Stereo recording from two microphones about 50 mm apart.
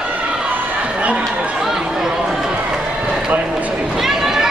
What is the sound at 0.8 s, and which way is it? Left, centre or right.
Run, right.